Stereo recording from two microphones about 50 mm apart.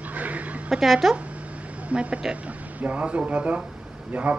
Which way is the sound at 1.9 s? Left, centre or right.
Right.